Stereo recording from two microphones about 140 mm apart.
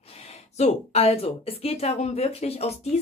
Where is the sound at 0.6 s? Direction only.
45° left (ahead or behind).